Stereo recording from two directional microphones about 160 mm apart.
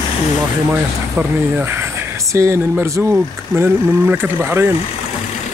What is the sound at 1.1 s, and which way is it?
Speech, 15° right (ahead or behind).